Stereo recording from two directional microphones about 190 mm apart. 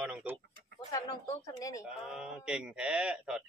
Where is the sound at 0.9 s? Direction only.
20° left (ahead or behind).